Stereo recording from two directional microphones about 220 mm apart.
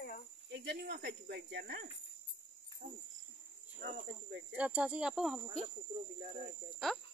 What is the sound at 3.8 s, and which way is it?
Speech, 50° right (ahead or behind).